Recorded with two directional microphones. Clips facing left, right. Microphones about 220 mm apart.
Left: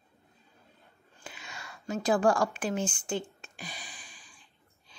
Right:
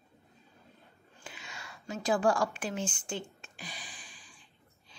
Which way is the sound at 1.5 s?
50° left (ahead or behind).